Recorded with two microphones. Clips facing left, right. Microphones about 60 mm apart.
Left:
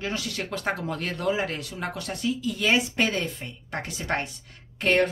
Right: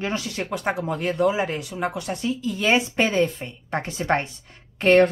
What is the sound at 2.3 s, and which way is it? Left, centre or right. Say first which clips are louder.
Speech: right 2 dB; right.